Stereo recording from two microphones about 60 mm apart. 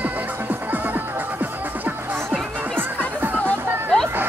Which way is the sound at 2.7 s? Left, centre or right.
Right.